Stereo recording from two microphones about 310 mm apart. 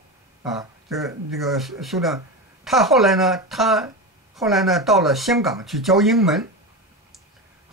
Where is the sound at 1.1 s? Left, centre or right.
Centre.